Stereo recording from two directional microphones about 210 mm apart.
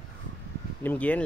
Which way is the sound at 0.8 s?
10° left (ahead or behind).